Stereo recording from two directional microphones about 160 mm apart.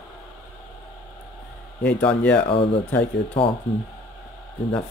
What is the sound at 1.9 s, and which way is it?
Speech, 10° left (ahead or behind).